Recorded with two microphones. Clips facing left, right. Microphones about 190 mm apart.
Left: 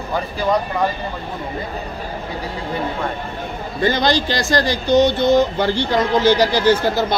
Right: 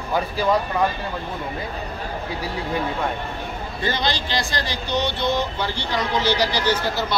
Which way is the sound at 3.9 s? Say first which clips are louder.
Left 4 dB; 45° left (ahead or behind).